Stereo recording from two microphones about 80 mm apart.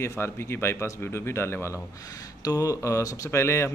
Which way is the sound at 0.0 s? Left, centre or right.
Left.